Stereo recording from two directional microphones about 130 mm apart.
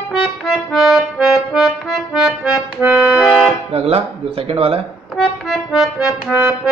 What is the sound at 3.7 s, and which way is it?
Speech, 50° right (ahead or behind).